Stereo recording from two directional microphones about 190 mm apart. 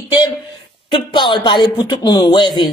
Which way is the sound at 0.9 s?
25° left (ahead or behind).